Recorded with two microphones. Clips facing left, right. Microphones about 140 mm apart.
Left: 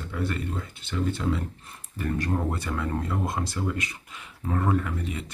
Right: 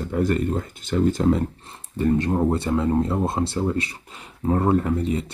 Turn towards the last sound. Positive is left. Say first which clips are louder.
# right 7 dB
turn(degrees=-35)  # may be behind; listen again after turning